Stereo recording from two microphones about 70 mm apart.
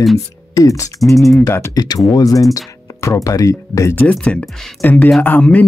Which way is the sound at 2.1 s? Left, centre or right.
Left.